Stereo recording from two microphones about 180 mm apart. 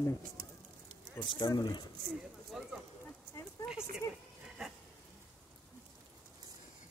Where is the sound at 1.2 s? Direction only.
20° left (ahead or behind).